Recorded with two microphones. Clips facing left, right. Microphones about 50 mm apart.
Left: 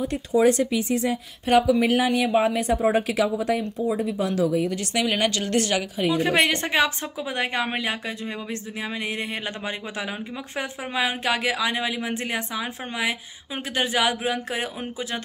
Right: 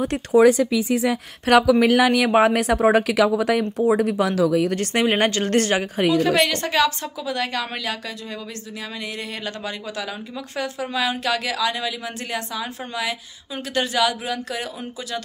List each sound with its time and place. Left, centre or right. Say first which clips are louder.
0.0 s speech: right 4 dB; right
1.4 s speech: right 4 dB; right
4.7 s speech: right 4 dB; right
6.1 s a woman's voice: even; left
10.5 s a woman's voice: right 3 dB; left